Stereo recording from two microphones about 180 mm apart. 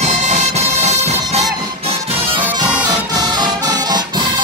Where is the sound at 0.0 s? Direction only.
40° right (ahead or behind); by 4.0 s 20° right (ahead or behind).